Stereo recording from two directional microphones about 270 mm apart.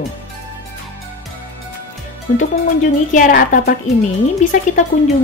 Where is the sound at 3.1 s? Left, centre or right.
Left.